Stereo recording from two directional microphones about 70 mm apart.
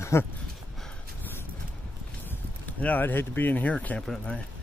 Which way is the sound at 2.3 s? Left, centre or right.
Left.